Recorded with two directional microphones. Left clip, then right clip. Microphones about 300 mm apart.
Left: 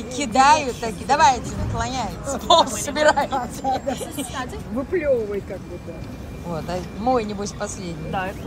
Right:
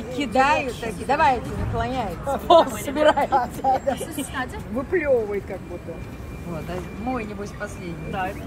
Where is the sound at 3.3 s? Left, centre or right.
Right.